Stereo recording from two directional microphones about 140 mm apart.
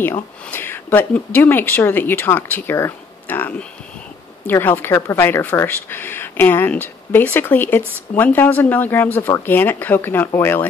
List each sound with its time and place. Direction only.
0.0 s speech: 15° left (ahead or behind)